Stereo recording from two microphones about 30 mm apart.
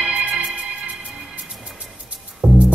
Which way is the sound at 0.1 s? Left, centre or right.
Right.